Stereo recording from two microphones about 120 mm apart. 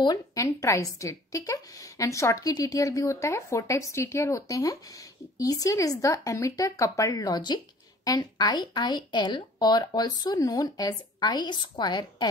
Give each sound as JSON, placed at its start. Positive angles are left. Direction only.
{"t": 0.0, "sound": "a woman's voice", "side_deg": 30}